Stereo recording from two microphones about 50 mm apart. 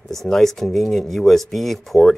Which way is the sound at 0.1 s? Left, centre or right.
Centre.